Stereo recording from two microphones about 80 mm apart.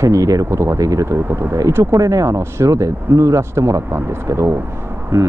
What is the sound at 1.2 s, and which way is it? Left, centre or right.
Speech, right.